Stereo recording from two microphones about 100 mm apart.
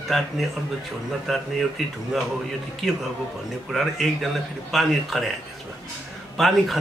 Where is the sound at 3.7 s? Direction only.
Centre (ahead or behind).